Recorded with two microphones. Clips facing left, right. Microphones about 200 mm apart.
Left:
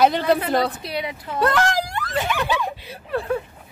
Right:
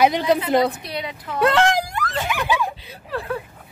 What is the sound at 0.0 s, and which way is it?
Speech, 15° right (ahead or behind).